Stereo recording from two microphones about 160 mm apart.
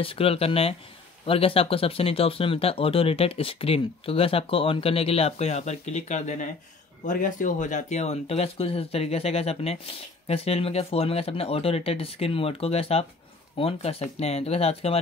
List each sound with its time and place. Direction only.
0.0 s speech: 35° left (ahead or behind)